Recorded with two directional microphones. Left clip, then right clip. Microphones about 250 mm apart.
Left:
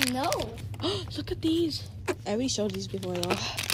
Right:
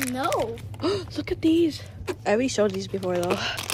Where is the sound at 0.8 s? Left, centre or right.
Centre.